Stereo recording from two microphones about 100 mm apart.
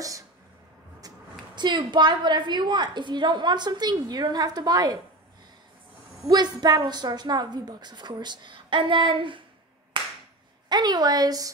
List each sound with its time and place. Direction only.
1.5 s a woman's voice: 50° right (ahead or behind)
6.2 s a woman's voice: 45° right (ahead or behind)
9.9 s clapping: 55° right (ahead or behind)
10.7 s a woman's voice: 45° right (ahead or behind)